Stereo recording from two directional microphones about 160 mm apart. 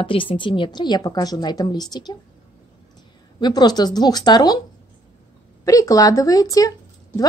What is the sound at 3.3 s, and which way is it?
A woman's voice, 25° left (ahead or behind).